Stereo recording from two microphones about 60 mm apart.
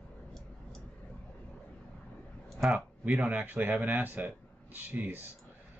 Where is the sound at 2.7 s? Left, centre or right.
Right.